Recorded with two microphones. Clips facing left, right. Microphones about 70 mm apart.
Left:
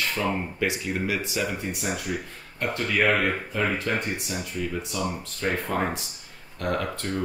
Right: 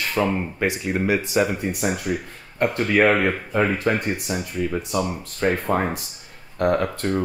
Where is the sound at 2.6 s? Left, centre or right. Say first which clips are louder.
Right 6 dB; right.